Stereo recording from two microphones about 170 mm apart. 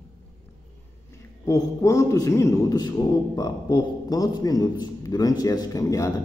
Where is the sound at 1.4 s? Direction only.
20° left (ahead or behind).